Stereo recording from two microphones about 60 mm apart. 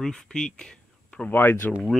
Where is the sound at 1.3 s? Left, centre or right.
Left.